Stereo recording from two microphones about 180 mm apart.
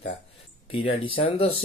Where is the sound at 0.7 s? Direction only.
30° left (ahead or behind).